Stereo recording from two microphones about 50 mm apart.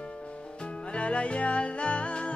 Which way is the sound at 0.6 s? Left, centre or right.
Left.